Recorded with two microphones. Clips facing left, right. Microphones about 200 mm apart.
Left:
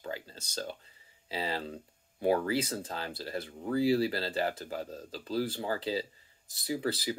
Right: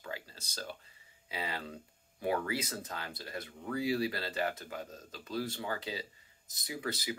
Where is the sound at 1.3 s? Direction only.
30° left (ahead or behind).